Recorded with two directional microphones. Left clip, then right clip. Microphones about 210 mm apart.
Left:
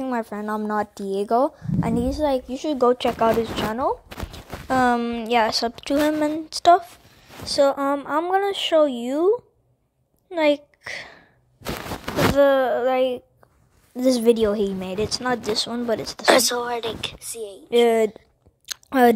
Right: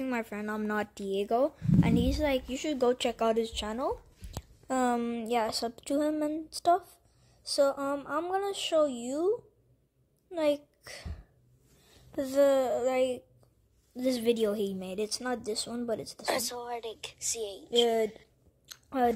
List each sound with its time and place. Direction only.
0.0 s speech: 20° left (ahead or behind)
1.8 s speech: 20° left (ahead or behind)
10.3 s a woman's voice: 25° left (ahead or behind)
12.4 s speech: 10° left (ahead or behind)
13.9 s speech: 40° left (ahead or behind)
14.3 s speech: 20° left (ahead or behind)
16.3 s a woman's voice: centre (ahead or behind)
17.8 s speech: 40° left (ahead or behind)
18.7 s chewing: 50° left (ahead or behind)